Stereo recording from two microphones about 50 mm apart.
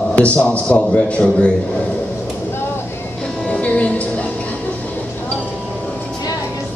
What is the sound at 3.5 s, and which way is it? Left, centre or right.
Music, left.